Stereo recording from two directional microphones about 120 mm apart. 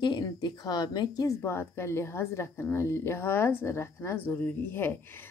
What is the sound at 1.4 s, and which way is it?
A woman's voice, 20° left (ahead or behind).